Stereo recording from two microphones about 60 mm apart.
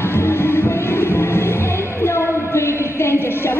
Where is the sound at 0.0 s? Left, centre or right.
Left.